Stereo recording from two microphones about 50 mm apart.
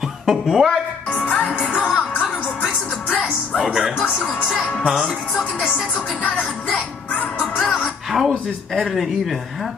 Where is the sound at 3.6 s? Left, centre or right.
Centre.